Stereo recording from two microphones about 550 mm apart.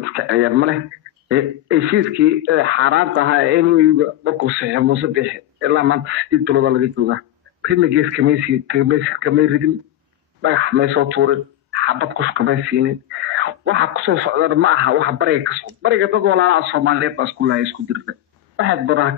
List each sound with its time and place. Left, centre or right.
0.1 s speech: right